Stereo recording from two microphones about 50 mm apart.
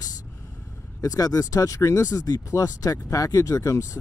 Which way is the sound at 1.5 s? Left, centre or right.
Left.